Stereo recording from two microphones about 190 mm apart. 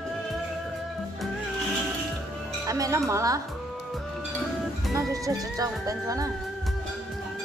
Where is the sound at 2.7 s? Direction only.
15° right (ahead or behind).